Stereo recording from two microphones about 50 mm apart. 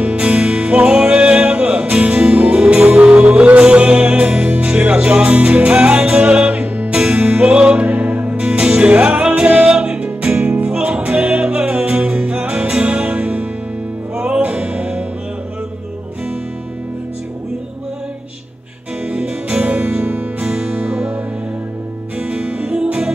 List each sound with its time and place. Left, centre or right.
0.0 s music: right
19.0 s music: right
22.3 s music: right